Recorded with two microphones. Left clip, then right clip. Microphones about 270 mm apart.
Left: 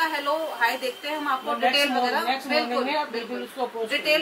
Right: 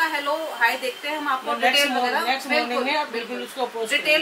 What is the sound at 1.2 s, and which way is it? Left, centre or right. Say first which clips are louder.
A woman's voice: right 2 dB; centre.